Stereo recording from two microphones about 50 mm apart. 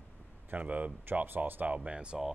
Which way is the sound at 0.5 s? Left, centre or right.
Right.